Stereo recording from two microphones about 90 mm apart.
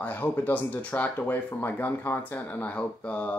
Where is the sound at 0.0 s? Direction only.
20° left (ahead or behind).